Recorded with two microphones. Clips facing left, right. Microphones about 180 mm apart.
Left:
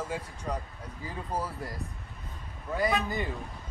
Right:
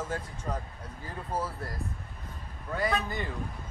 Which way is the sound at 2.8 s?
15° left (ahead or behind).